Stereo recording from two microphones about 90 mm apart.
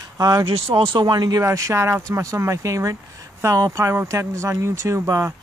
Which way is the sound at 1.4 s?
35° right (ahead or behind).